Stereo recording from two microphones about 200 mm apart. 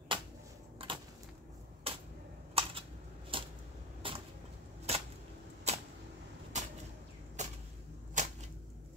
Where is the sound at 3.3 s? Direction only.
25° right (ahead or behind).